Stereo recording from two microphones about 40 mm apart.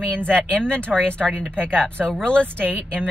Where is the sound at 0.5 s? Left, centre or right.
Left.